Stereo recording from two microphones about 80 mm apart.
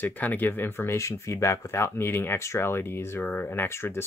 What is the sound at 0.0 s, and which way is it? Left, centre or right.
Speech, left.